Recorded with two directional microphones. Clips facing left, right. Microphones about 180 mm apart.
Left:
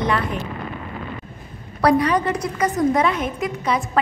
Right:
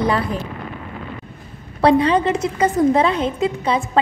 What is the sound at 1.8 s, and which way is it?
A woman's voice, 25° right (ahead or behind).